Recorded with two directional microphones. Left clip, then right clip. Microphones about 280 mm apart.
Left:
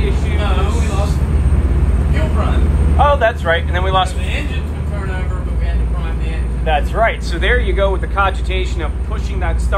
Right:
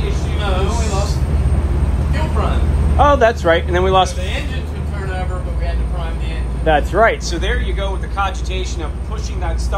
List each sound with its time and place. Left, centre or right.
3.0 s speech: right
6.6 s speech: right
7.4 s speech: centre